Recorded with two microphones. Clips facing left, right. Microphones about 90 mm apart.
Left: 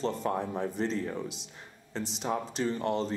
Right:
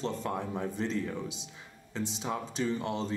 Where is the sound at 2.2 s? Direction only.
Centre (ahead or behind).